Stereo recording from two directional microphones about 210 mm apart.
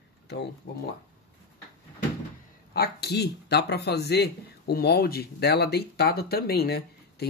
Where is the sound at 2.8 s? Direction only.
50° left (ahead or behind).